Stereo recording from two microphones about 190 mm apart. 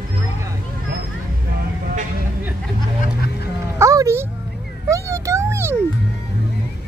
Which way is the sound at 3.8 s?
15° right (ahead or behind).